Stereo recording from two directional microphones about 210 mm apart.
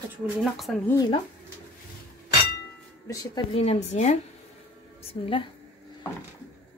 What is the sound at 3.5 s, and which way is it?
A woman's voice, 30° left (ahead or behind).